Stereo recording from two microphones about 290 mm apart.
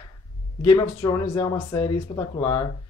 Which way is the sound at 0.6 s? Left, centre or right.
Centre.